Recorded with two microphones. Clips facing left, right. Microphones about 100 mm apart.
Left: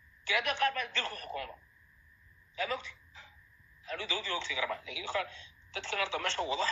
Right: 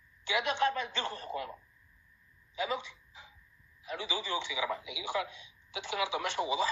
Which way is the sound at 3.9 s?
15° right (ahead or behind).